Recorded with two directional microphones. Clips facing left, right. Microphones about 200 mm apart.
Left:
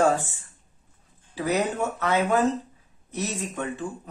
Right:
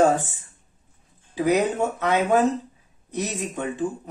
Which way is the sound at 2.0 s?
20° right (ahead or behind).